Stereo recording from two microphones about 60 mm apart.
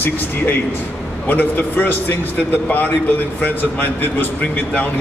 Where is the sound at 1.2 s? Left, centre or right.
Left.